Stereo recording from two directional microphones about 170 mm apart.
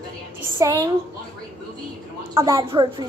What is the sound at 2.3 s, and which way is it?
Speech, 20° right (ahead or behind).